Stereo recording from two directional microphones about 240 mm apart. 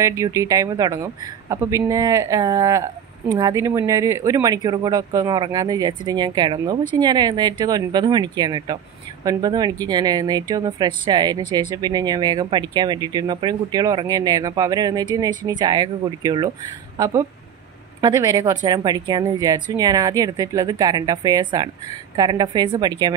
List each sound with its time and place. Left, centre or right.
0.0 s speech: centre